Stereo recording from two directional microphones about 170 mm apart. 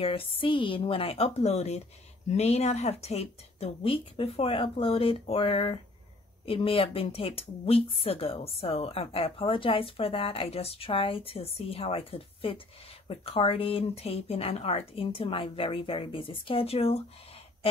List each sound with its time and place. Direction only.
0.0 s speech: 30° left (ahead or behind)